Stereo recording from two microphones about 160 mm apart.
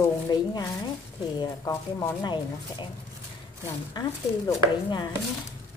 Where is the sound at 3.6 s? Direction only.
20° left (ahead or behind).